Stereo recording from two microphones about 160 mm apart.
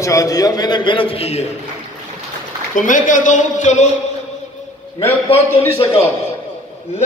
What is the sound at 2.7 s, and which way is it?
Speech, 55° left (ahead or behind).